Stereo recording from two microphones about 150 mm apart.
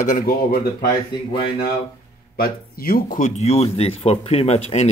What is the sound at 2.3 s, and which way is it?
Speech, 90° left.